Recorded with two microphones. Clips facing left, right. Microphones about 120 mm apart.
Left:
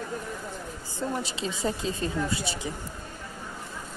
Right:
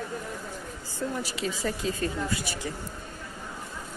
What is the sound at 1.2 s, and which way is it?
A woman's voice, 25° left (ahead or behind).